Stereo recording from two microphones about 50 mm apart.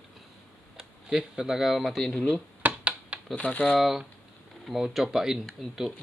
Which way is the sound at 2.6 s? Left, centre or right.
Right.